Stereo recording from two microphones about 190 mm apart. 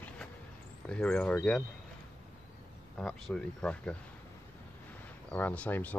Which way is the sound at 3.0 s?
5° left (ahead or behind).